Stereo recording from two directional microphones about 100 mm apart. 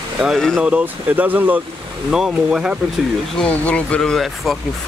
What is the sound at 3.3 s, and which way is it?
Speech, 10° left (ahead or behind).